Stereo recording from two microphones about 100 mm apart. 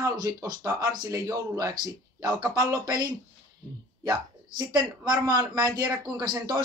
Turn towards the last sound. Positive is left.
turn(degrees=-45)  # may be behind; listen again after turning